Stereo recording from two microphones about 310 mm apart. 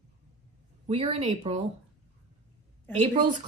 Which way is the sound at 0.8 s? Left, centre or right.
Centre.